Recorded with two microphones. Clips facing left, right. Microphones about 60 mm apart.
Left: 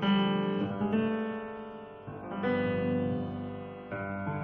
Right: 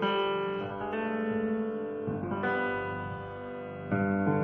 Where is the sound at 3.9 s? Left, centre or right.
Centre.